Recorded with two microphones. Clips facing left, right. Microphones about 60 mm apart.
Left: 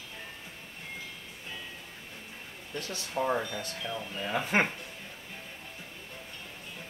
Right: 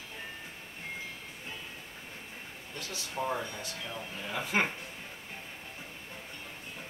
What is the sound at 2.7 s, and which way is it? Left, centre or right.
Speech, left.